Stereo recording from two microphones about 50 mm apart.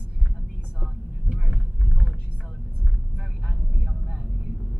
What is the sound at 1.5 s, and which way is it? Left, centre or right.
Vehicle, centre.